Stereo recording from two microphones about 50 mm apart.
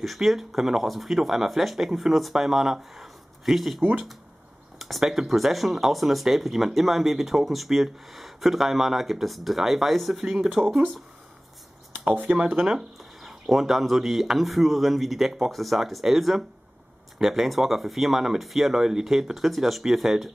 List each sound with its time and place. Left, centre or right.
0.0 s speech: centre
10.2 s speech: centre
12.0 s speech: right
12.6 s speech: centre